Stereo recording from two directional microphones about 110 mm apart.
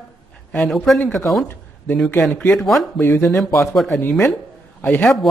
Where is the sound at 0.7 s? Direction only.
Centre (ahead or behind).